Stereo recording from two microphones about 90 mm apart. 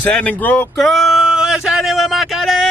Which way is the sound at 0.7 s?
Centre (ahead or behind).